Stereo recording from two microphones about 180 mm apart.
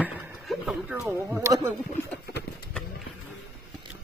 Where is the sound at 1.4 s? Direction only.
15° right (ahead or behind).